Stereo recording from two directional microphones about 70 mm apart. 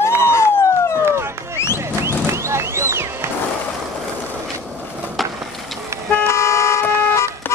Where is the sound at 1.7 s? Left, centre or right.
Right.